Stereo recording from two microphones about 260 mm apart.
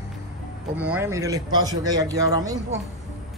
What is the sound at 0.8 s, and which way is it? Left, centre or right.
Speech, centre.